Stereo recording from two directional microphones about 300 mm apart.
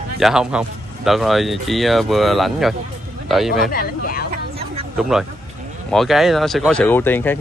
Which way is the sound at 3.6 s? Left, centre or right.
Left.